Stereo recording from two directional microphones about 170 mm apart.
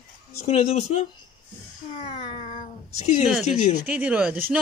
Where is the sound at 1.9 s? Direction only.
35° left (ahead or behind).